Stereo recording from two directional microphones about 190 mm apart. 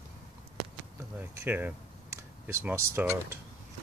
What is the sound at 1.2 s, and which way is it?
Speech, 10° right (ahead or behind).